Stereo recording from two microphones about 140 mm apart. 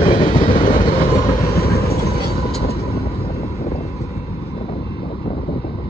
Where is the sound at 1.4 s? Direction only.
90° left.